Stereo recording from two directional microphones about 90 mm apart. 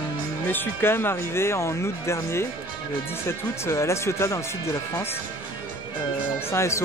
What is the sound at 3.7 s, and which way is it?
Speech, 30° left (ahead or behind).